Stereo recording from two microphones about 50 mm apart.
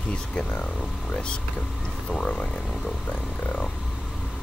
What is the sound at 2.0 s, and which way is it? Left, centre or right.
Frog, left.